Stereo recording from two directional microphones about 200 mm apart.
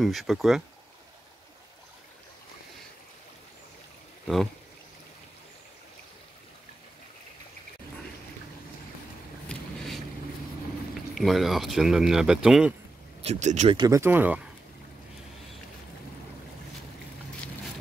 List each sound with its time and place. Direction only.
0.0 s speech: centre (ahead or behind)
9.5 s boat: centre (ahead or behind)
11.0 s speech: centre (ahead or behind)
13.2 s speech: 35° right (ahead or behind)
13.7 s speech: 15° right (ahead or behind)